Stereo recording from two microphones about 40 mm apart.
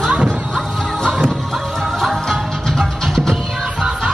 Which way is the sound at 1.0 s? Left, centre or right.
Centre.